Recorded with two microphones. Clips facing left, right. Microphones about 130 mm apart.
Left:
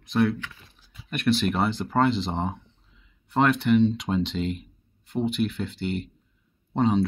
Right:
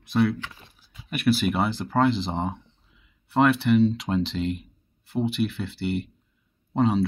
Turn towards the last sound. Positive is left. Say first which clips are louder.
# even
turn(degrees=0)  # may be behind; listen again after turning